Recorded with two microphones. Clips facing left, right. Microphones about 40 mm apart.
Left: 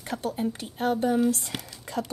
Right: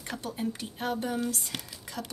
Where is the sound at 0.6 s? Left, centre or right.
Centre.